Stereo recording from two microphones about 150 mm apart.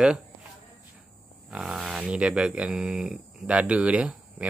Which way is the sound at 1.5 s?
5° right (ahead or behind).